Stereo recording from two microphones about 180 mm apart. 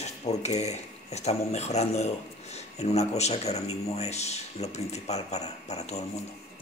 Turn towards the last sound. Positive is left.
turn(degrees=35)  # may be behind; listen again after turning